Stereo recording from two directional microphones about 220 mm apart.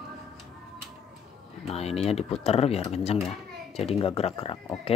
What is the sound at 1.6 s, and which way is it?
A child's voice, 30° left (ahead or behind).